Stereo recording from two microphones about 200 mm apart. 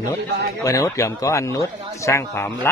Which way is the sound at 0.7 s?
15° left (ahead or behind).